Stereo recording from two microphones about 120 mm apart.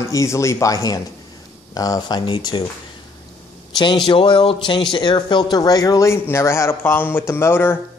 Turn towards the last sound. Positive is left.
turn(degrees=20)  # may be behind; listen again after turning